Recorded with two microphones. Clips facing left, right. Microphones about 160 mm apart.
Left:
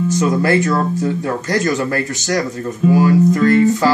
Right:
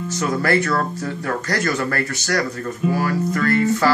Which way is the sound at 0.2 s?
20° left (ahead or behind).